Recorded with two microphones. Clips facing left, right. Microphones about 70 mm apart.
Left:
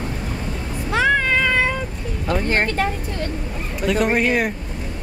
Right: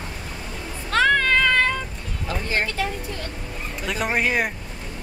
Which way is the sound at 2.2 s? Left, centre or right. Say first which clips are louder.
Left 5 dB; left.